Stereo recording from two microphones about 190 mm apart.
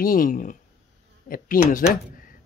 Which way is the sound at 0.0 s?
45° left (ahead or behind).